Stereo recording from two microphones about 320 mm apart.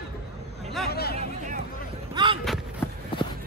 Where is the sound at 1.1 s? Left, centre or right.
Centre.